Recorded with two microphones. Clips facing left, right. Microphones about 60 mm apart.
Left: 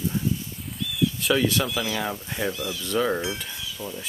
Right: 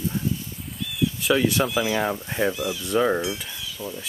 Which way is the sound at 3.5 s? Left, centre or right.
Centre.